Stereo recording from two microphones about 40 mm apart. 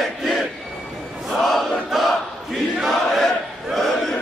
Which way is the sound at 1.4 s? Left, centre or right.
Centre.